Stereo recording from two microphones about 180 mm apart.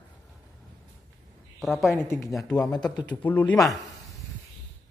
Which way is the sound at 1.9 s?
15° left (ahead or behind).